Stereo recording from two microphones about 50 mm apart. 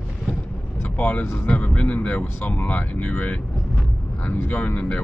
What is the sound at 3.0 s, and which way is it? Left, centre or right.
Speech, left.